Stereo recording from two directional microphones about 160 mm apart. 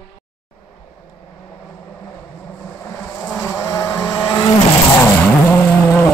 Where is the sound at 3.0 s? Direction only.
10° left (ahead or behind).